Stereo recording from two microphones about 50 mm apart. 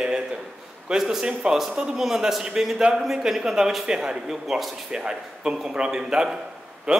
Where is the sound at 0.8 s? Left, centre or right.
Centre.